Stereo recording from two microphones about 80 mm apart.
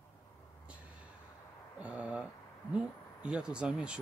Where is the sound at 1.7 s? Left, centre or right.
Centre.